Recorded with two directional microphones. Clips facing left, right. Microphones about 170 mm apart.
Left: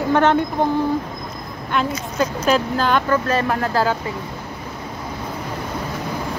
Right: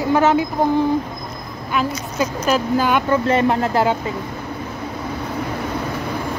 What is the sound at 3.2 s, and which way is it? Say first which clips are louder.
Speech: right 3 dB; 25° right (ahead or behind).